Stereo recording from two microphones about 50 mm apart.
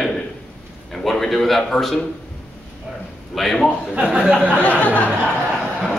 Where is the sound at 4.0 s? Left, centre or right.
Centre.